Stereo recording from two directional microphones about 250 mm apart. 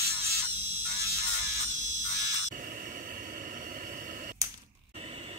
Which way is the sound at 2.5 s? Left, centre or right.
Right.